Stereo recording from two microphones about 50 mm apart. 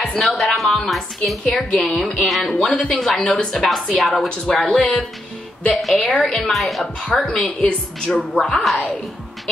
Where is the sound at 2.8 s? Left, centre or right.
Centre.